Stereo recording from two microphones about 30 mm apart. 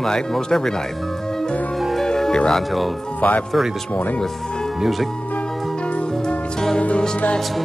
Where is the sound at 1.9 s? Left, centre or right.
Centre.